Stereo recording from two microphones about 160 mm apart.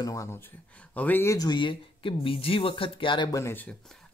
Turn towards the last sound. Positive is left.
turn(degrees=15)  # may be behind; listen again after turning